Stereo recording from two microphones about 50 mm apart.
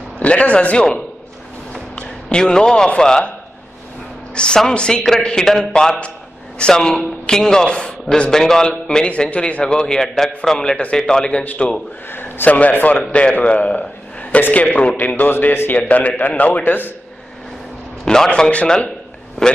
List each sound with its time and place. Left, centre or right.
0.2 s a man's voice: left
2.0 s a sound: centre
3.0 s a man's voice: centre
4.4 s a man's voice: centre
12.1 s a sound: left
12.4 s a man's voice: left
18.0 s a man's voice: centre